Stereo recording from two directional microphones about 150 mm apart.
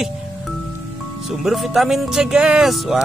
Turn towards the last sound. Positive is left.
turn(degrees=0)  # may be behind; listen again after turning